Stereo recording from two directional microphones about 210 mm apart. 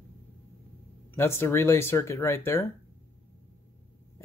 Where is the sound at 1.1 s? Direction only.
10° left (ahead or behind).